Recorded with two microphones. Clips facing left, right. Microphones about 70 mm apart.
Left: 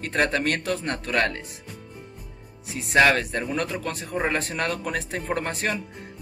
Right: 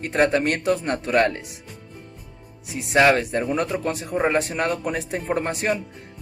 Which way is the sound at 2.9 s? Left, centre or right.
Centre.